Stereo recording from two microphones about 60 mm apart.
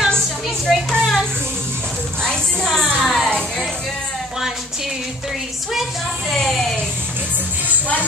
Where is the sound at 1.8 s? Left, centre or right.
Centre.